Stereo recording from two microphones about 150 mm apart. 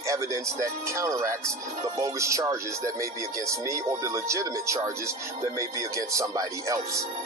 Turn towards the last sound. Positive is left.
turn(degrees=-20)  # may be behind; listen again after turning